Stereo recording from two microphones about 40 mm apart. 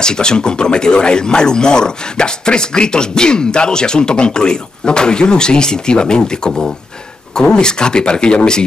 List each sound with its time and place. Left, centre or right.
0.0 s speech: centre